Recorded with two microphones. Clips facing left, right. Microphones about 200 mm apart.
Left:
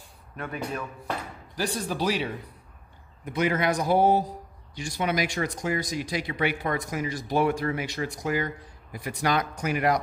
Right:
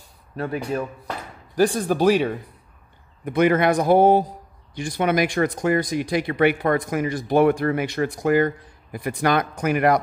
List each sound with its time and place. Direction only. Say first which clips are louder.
0.4 s speech: right 7 dB; 30° right (ahead or behind)
1.5 s speech: right 10 dB; 50° right (ahead or behind)